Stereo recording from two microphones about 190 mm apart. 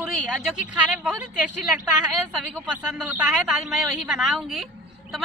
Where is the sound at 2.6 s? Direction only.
5° right (ahead or behind).